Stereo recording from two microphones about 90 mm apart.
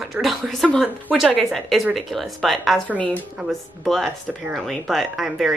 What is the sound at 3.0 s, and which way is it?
Speech, 15° left (ahead or behind).